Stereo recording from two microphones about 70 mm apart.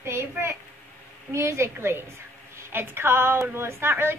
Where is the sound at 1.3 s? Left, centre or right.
Right.